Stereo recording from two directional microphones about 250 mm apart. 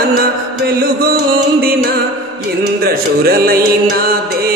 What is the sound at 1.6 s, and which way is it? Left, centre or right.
Music, right.